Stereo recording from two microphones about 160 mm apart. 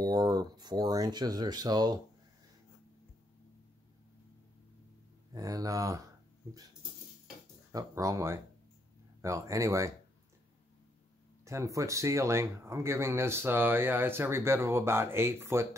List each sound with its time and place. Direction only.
0.0 s speech: 25° right (ahead or behind)
5.3 s speech: 20° right (ahead or behind)
7.7 s speech: 20° right (ahead or behind)
11.4 s speech: 20° right (ahead or behind)